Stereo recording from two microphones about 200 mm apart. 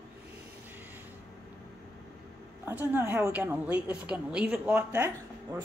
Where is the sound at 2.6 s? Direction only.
10° right (ahead or behind).